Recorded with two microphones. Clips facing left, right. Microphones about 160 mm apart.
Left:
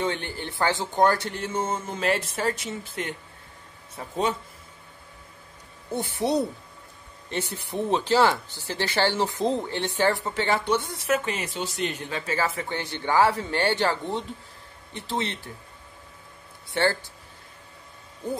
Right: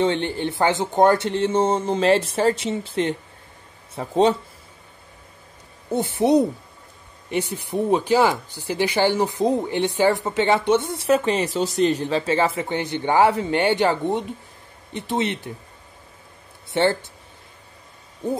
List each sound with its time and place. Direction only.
0.0 s speech: 25° right (ahead or behind)
4.1 s speech: 35° right (ahead or behind)
5.9 s speech: 20° right (ahead or behind)
16.7 s speech: 20° right (ahead or behind)